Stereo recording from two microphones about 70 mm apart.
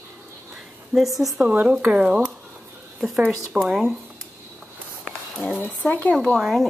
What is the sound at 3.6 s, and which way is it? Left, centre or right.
Speech, centre.